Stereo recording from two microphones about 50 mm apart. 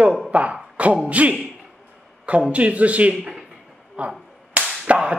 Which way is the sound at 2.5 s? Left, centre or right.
Right.